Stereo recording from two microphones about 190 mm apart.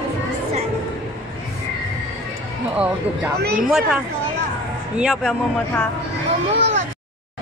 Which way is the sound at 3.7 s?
Centre (ahead or behind).